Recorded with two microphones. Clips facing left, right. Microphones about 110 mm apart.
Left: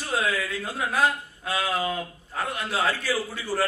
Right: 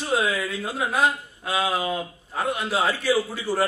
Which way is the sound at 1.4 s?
15° right (ahead or behind).